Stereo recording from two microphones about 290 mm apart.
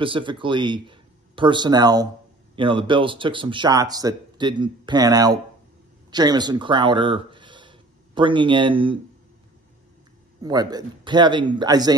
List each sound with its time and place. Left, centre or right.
0.0 s a man's voice: centre
10.4 s speech: centre